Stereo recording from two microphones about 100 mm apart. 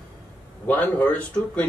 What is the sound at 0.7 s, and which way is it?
Speech, 15° left (ahead or behind).